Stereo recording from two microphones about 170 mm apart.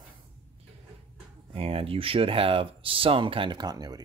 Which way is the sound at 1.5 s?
35° right (ahead or behind).